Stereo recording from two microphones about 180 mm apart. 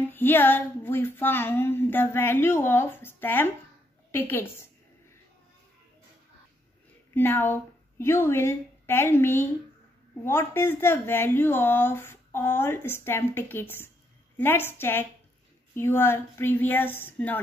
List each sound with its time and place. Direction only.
0.0 s speech: 10° left (ahead or behind)
7.2 s a woman's voice: 10° left (ahead or behind)